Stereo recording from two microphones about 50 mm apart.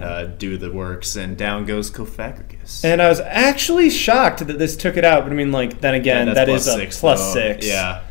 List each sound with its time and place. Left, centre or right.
0.0 s speech: centre